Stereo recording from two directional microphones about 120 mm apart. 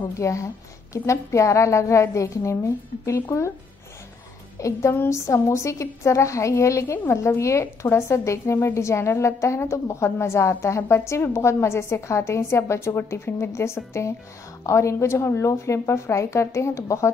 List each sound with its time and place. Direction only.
0.2 s a woman's voice: 25° left (ahead or behind)
4.6 s a woman's voice: 25° left (ahead or behind)